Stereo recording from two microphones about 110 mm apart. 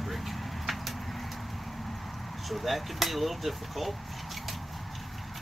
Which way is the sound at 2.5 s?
Centre (ahead or behind).